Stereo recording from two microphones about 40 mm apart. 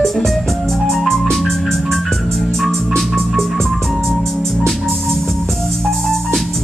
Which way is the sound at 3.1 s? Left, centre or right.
Centre.